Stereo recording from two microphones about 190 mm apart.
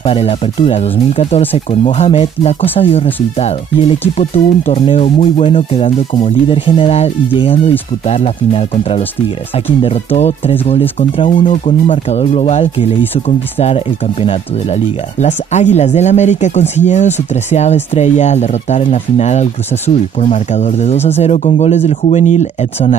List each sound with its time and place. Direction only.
0.0 s speech: 30° left (ahead or behind)